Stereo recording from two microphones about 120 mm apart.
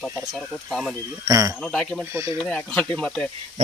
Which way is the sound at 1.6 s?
5° left (ahead or behind).